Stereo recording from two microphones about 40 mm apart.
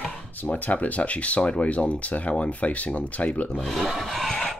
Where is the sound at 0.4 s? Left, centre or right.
Left.